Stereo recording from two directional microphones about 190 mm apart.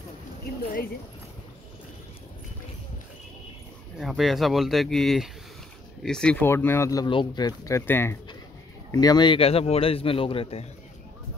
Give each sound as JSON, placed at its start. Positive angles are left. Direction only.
{"t": 4.0, "sound": "a man's voice", "side_deg": 0}